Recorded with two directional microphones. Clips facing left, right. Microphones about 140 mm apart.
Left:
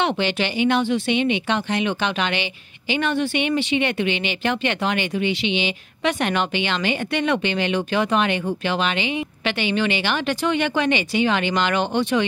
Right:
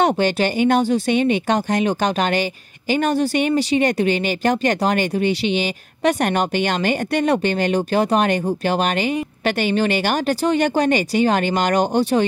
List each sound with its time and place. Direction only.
0.0 s speech: 45° right (ahead or behind)